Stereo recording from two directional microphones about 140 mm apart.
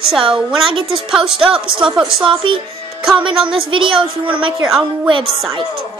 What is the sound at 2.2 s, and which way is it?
Child singing, 35° right (ahead or behind).